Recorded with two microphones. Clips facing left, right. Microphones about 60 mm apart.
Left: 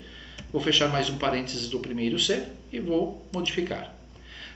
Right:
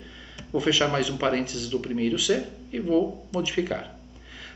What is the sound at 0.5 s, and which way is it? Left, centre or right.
Speech, centre.